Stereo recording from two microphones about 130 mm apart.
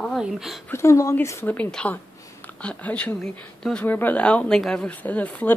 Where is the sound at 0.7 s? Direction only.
20° left (ahead or behind).